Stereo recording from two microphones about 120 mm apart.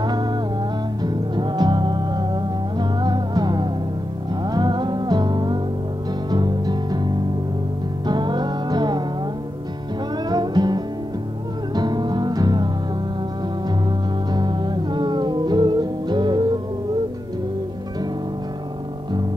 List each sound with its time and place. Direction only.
0.0 s music: 35° right (ahead or behind)
10.3 s music: 35° right (ahead or behind)
14.3 s music: 35° right (ahead or behind)